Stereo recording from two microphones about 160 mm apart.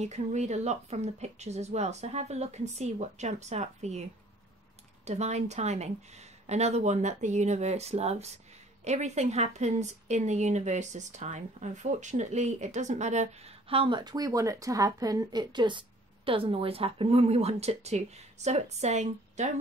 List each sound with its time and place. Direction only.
0.0 s speech: 45° right (ahead or behind)
5.0 s speech: 45° right (ahead or behind)